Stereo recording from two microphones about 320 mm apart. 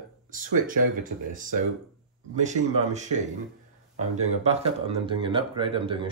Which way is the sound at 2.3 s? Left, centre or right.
Right.